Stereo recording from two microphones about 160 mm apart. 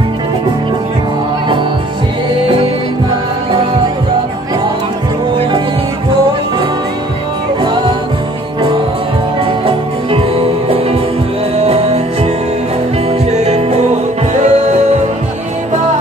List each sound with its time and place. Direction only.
7.6 s music: 30° right (ahead or behind)
9.4 s music: 35° right (ahead or behind)
11.5 s music: 40° right (ahead or behind)
13.4 s music: 45° right (ahead or behind)